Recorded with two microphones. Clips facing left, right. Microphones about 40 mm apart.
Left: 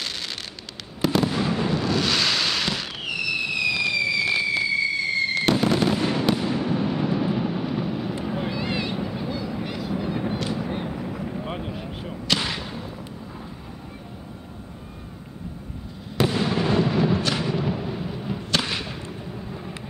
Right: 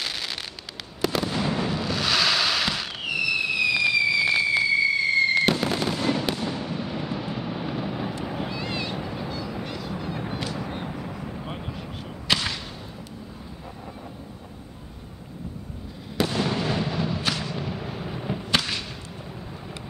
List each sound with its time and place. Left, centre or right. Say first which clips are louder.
1.0 s fireworks: left 3 dB; centre
5.9 s fireworks: left 3 dB; centre
7.7 s vehicle: left 2 dB; centre
8.3 s vehicle: left 3 dB; centre
12.4 s a sound: left 2 dB; centre
16.2 s fireworks: left 2 dB; centre
17.3 s a sound: left 4 dB; centre
17.8 s thunder: left 2 dB; centre
18.6 s a sound: left 2 dB; centre